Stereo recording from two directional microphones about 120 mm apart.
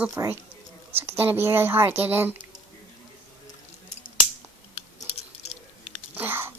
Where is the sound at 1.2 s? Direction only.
20° right (ahead or behind).